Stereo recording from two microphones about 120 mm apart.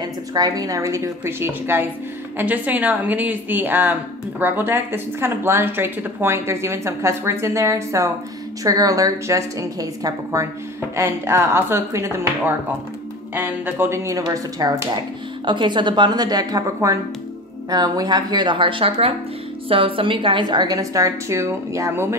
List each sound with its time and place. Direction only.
0.0 s a woman's voice: 35° right (ahead or behind)
15.4 s a woman's voice: 40° right (ahead or behind); by 22.1 s 20° right (ahead or behind)